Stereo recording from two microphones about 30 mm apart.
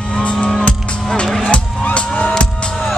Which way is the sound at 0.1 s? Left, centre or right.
Left.